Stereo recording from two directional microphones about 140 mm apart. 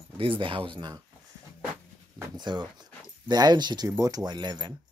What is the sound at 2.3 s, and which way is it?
Speech, 30° right (ahead or behind).